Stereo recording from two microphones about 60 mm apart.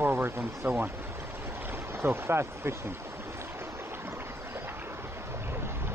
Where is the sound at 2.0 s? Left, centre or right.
Right.